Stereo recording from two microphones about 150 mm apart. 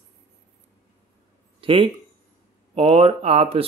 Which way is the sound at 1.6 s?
35° right (ahead or behind).